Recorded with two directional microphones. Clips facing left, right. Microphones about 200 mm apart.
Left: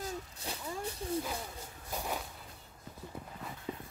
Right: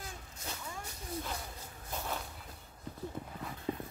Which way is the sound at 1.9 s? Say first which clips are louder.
Left 1 dB; 10° left (ahead or behind).